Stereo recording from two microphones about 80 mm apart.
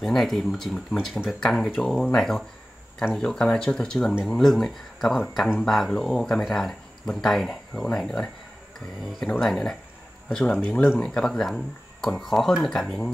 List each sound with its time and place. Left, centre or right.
0.0 s speech: centre
9.4 s speech: centre
10.7 s speech: left
11.1 s speech: centre